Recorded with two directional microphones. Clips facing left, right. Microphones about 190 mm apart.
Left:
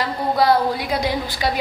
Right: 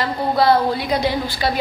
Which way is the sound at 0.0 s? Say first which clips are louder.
Right 1 dB; 10° left (ahead or behind).